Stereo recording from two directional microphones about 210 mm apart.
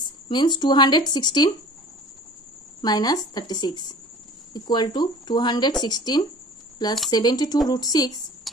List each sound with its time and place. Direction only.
0.0 s speech: 20° left (ahead or behind)
2.8 s speech: 20° left (ahead or behind)